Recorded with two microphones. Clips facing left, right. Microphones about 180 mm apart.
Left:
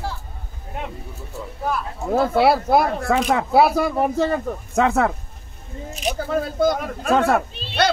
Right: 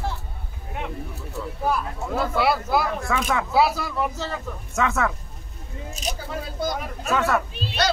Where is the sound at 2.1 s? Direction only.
55° left (ahead or behind).